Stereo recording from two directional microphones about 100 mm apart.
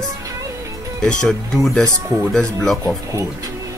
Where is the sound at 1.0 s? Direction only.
5° left (ahead or behind).